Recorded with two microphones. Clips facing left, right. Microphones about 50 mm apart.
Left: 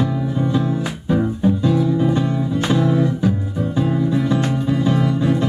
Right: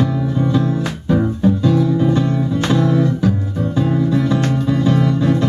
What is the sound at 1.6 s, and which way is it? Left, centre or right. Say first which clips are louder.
Music: right 2 dB; centre.